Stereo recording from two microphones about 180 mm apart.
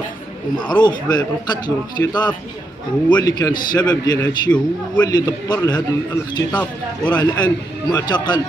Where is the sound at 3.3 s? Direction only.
20° left (ahead or behind).